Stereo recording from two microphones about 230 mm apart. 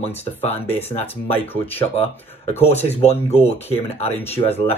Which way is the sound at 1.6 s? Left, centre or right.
Left.